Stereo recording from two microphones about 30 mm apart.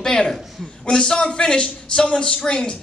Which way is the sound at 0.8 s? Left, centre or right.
Left.